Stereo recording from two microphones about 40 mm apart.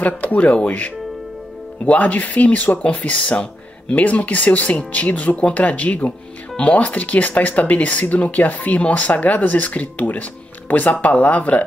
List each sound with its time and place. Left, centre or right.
0.0 s speech: left